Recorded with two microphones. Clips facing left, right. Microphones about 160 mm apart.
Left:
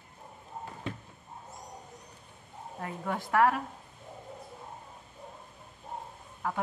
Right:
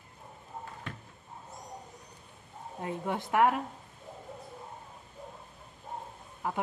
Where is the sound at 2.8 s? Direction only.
20° right (ahead or behind).